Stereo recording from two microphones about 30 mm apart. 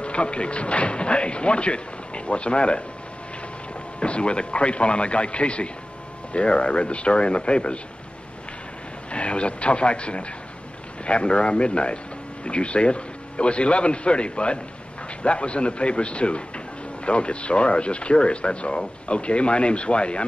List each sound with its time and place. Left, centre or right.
0.0 s speech: left
4.0 s speech: left
9.1 s speech: left